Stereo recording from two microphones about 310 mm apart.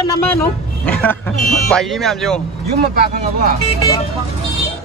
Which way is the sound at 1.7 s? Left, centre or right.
Centre.